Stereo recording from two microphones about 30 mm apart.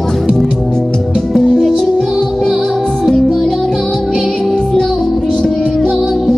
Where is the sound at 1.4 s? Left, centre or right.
Centre.